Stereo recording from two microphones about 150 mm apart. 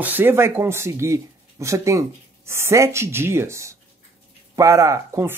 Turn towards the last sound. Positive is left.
turn(degrees=-20)  # may be behind; listen again after turning